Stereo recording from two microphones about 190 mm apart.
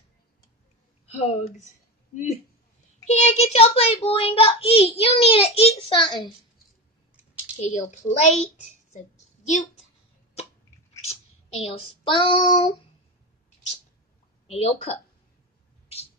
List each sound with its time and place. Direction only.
1.0 s a child's voice: 35° left (ahead or behind)
3.1 s a child's voice: 35° left (ahead or behind)
7.6 s a child's voice: 40° left (ahead or behind)
9.5 s a woman's voice: 40° left (ahead or behind)
11.1 s child singing: 30° left (ahead or behind)
14.5 s a child's voice: 30° left (ahead or behind)